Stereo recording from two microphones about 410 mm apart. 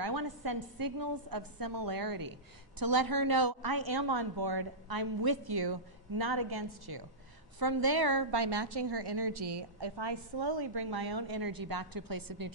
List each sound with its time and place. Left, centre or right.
0.0 s a woman's voice: right